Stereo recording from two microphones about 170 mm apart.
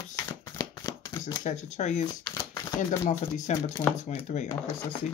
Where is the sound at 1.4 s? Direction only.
45° left (ahead or behind).